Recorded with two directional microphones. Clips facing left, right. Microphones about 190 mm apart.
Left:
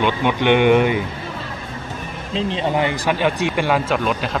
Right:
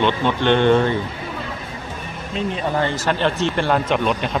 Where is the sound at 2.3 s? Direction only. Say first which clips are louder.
Left 2 dB; 30° left (ahead or behind).